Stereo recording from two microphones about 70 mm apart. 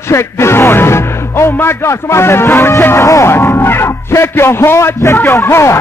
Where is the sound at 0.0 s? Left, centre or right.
Left.